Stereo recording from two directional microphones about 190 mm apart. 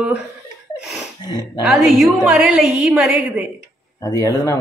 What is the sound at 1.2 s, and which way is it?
Speech, 20° left (ahead or behind).